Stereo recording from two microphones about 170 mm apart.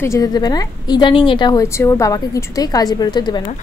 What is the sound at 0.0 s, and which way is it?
A woman's voice, 20° left (ahead or behind).